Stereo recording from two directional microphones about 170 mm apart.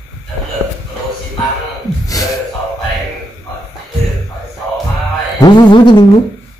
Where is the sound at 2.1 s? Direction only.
20° left (ahead or behind).